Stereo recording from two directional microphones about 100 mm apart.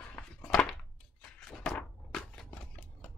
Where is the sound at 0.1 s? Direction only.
10° left (ahead or behind).